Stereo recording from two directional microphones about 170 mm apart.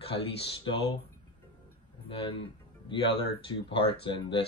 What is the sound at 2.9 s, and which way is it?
Speech, 30° left (ahead or behind).